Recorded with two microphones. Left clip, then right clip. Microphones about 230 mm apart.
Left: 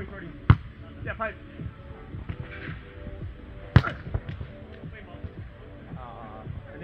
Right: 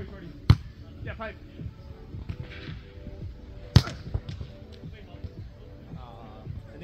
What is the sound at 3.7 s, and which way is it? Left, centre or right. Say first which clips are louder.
Basketball bounce: left 2 dB; centre.